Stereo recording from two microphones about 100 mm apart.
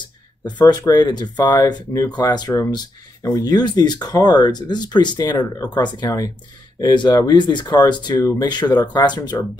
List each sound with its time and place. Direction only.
0.6 s speech: 45° left (ahead or behind)